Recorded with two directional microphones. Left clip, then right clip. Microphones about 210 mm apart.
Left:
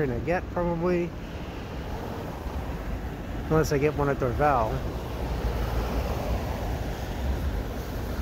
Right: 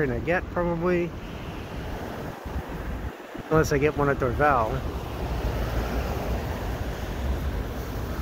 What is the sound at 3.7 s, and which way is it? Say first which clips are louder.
Speech: right 2 dB; centre (ahead or behind).